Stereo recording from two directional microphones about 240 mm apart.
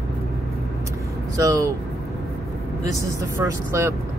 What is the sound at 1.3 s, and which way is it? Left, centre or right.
Speech, centre.